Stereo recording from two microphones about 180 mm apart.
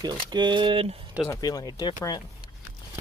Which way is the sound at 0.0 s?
25° right (ahead or behind).